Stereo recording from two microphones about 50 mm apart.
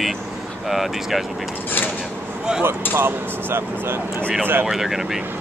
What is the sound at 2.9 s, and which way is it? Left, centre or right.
Speech, right.